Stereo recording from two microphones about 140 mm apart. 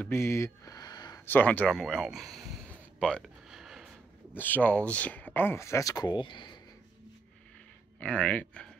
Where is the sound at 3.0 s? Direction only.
Centre (ahead or behind).